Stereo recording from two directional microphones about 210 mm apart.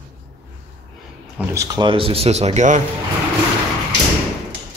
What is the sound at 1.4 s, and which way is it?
Speech, 15° right (ahead or behind).